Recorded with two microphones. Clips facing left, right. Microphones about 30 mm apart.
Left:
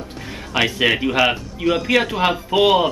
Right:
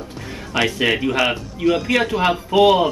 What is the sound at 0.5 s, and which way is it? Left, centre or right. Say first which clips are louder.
Speech: left 1 dB; centre.